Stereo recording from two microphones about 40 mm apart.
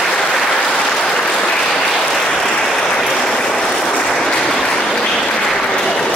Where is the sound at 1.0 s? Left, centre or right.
Centre.